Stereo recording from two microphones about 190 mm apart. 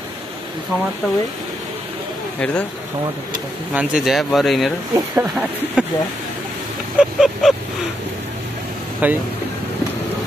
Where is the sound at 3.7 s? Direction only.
5° right (ahead or behind).